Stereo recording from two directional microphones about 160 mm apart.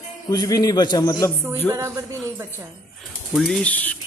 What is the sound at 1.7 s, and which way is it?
Speech, 20° right (ahead or behind).